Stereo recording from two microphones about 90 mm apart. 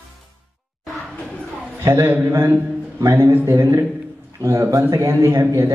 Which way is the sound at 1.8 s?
25° right (ahead or behind).